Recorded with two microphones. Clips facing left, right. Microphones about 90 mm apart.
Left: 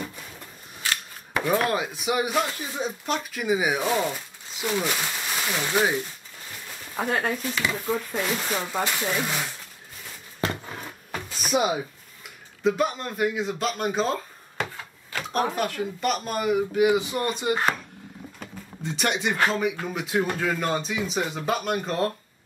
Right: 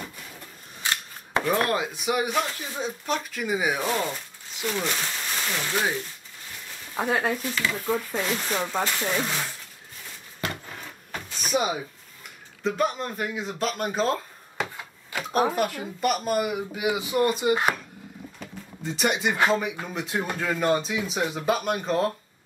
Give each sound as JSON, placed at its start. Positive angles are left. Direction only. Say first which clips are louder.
{"t": 0.8, "sound": "cap gun", "louder": "even", "side_deg": -20}
{"t": 1.5, "sound": "speech", "louder": "left 1 dB", "side_deg": 5}
{"t": 7.0, "sound": "speech", "louder": "right 1 dB", "side_deg": -5}
{"t": 10.4, "sound": "a sound", "louder": "left 4 dB", "side_deg": 30}
{"t": 11.1, "sound": "a sound", "louder": "left 2 dB", "side_deg": 5}
{"t": 12.6, "sound": "speech", "louder": "left 2 dB", "side_deg": 0}
{"t": 18.8, "sound": "speech", "louder": "right 1 dB", "side_deg": 0}